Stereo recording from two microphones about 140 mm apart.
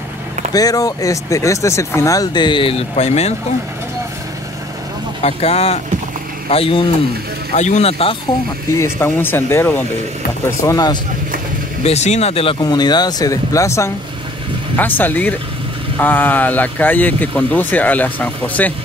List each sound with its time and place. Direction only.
0.5 s speech: 25° left (ahead or behind); by 3.3 s 50° left (ahead or behind)
5.2 s speech: 45° left (ahead or behind)
7.5 s speech: 55° left (ahead or behind)
8.7 s speech: 15° left (ahead or behind)
10.6 s speech: 25° left (ahead or behind)
11.8 s speech: 50° left (ahead or behind)
12.5 s speech: 30° left (ahead or behind); by 18.7 s 10° left (ahead or behind)